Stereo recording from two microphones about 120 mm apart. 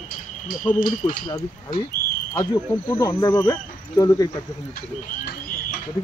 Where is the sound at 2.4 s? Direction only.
30° left (ahead or behind).